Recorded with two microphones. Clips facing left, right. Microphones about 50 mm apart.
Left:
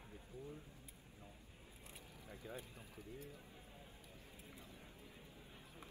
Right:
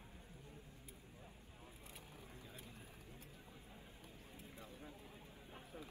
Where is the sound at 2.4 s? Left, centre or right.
Left.